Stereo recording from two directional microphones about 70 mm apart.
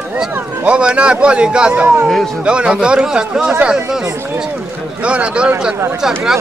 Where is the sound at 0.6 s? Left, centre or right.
Centre.